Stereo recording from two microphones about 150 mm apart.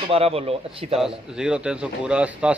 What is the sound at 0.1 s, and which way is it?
Speech, 40° right (ahead or behind).